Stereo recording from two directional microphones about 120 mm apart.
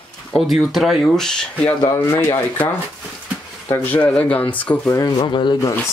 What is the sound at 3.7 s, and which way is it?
Speech, 15° left (ahead or behind).